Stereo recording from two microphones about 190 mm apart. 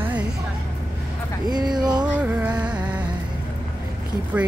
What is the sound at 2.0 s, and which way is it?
Music, 5° right (ahead or behind).